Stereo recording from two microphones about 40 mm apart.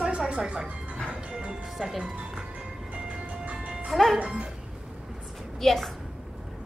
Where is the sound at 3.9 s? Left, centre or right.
Centre.